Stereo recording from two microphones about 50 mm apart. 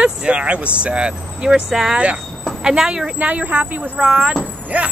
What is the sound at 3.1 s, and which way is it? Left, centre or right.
Speech, right.